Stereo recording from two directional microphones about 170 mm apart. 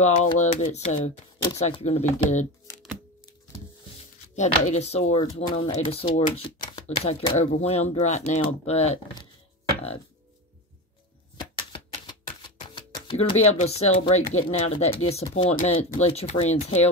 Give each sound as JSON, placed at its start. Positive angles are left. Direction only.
{"t": 0.4, "sound": "speech", "side_deg": 45}
{"t": 4.4, "sound": "speech", "side_deg": 40}
{"t": 5.2, "sound": "speech", "side_deg": 25}
{"t": 5.7, "sound": "speech", "side_deg": 35}
{"t": 9.1, "sound": "a sound", "side_deg": 25}
{"t": 11.3, "sound": "typewriter", "side_deg": 30}
{"t": 15.3, "sound": "speech", "side_deg": 40}